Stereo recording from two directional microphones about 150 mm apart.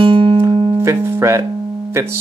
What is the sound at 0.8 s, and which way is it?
Music, 15° right (ahead or behind).